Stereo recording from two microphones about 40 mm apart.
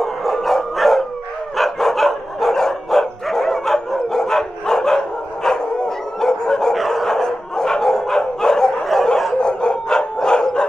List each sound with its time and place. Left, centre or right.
0.0 s dog: centre
6.7 s dog: centre